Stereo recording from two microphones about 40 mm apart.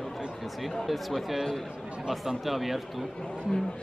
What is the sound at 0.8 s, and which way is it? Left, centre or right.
Speech, centre.